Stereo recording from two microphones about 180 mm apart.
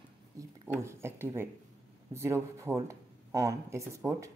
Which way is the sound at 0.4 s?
15° right (ahead or behind).